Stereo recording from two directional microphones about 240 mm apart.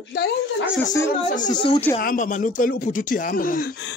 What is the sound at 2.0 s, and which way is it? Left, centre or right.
Speech, left.